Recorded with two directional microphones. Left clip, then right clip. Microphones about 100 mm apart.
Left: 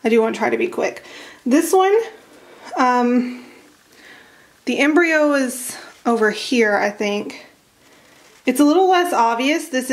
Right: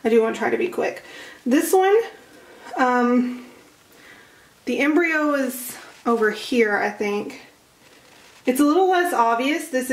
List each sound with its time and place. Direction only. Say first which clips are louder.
0.0 s speech: left 2 dB; 35° left (ahead or behind)
4.6 s speech: left 4 dB; 35° left (ahead or behind)
8.6 s speech: left 4 dB; 35° left (ahead or behind)